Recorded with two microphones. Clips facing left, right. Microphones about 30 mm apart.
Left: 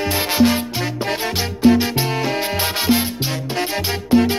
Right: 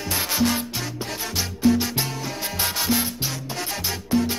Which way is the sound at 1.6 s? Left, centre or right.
Left.